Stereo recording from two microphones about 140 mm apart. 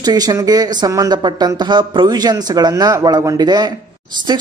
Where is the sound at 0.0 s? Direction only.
25° right (ahead or behind).